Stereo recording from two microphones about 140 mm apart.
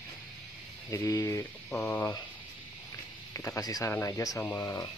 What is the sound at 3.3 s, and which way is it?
Speech, 20° left (ahead or behind).